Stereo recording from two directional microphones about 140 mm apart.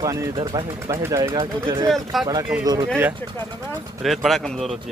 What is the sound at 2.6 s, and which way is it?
Speech, 25° right (ahead or behind).